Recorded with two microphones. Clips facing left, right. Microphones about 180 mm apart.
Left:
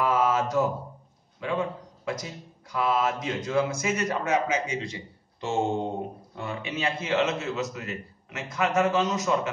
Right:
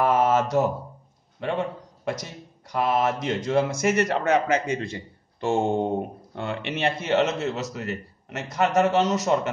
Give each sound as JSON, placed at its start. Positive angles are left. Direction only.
{"t": 0.0, "sound": "mantra", "side_deg": -70}
{"t": 1.4, "sound": "a man's voice", "side_deg": -65}
{"t": 6.3, "sound": "a man's voice", "side_deg": -70}